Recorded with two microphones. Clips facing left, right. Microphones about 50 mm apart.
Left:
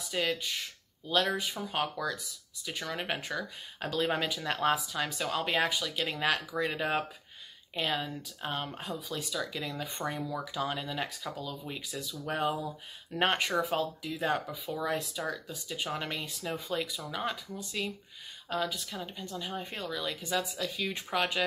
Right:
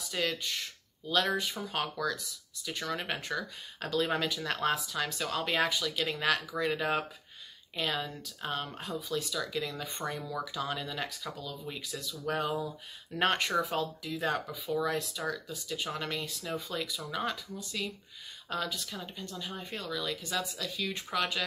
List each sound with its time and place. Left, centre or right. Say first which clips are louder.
0.1 s speech: left 1 dB; centre
1.7 s speech: left 1 dB; centre
13.1 s speech: even; centre
17.0 s speech: even; centre
17.8 s speech: left 2 dB; centre
18.5 s speech: left 2 dB; centre